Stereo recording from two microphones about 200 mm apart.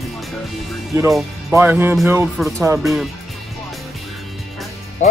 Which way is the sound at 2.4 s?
Centre (ahead or behind).